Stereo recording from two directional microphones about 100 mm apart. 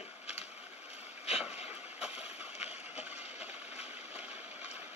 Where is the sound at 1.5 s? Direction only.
90° left.